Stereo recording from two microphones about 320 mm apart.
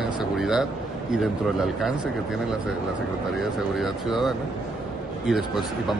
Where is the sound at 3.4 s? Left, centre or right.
Centre.